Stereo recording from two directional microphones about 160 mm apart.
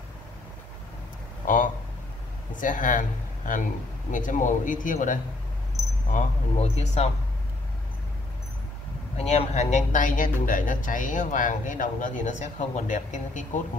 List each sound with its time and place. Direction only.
1.4 s a sound: 55° left (ahead or behind)
2.5 s speech: 55° left (ahead or behind)
9.1 s speech: 45° left (ahead or behind)